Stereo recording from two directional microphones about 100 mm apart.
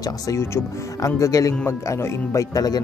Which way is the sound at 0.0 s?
30° left (ahead or behind).